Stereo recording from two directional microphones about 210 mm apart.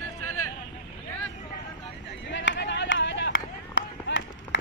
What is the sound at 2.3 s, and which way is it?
Run, 60° left (ahead or behind).